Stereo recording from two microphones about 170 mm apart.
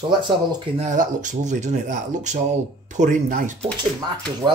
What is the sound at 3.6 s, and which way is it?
Speech, 25° right (ahead or behind).